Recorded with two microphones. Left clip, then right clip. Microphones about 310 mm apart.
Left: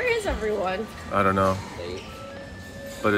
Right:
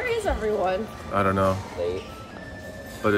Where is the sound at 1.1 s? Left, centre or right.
Centre.